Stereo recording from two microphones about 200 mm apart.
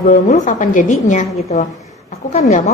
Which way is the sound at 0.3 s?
40° left (ahead or behind).